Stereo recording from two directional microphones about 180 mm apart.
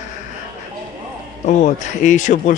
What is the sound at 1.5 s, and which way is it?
Speech, 45° left (ahead or behind).